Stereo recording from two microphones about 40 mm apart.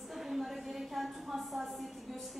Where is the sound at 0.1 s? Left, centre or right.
Centre.